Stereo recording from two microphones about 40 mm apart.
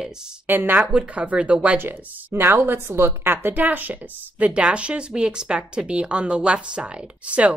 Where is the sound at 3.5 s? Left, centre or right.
Right.